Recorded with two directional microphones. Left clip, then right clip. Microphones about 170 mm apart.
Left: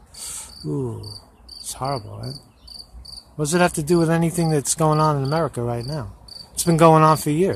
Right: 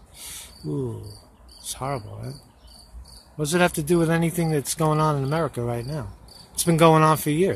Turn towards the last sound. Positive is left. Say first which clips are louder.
# left 3 dB
turn(degrees=10)  # may be behind; listen again after turning